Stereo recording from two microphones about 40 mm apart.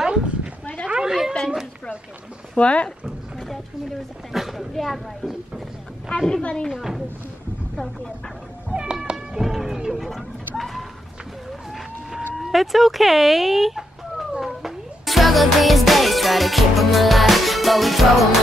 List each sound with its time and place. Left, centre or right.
0.0 s cat: right
2.5 s speech: left
4.3 s speech: centre
6.0 s a woman's voice: centre
6.4 s speech: left
6.7 s speech: centre
8.6 s cat: right
9.4 s music: centre
9.8 s speech: centre
10.0 s speech: centre
12.4 s speech: centre
14.4 s music: centre